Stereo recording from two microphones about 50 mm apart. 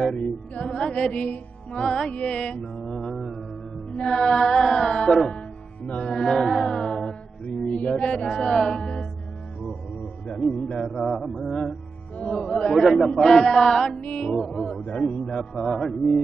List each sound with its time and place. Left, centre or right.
0.1 s music: centre
2.8 s a man's voice: centre
5.9 s a man's voice: centre
6.4 s mantra: centre
7.4 s mantra: left
7.9 s a man's voice: centre
10.2 s a man's voice: centre
13.9 s music: left
14.3 s a man's voice: centre
15.5 s mantra: centre